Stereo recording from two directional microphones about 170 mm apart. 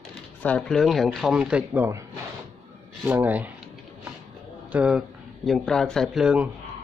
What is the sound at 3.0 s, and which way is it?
Speech, 10° right (ahead or behind).